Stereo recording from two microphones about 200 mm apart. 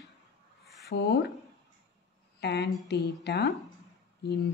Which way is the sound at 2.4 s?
55° left (ahead or behind).